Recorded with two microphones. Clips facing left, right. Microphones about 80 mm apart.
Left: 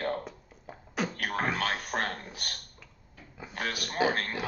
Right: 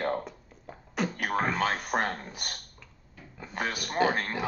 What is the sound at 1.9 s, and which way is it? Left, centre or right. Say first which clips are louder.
Speech: right 3 dB; right.